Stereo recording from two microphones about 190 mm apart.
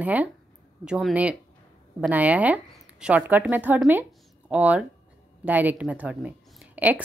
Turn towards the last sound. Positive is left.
turn(degrees=-10)  # may be behind; listen again after turning